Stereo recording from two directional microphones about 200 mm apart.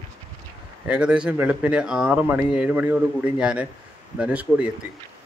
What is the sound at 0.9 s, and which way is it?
Speech, 5° right (ahead or behind).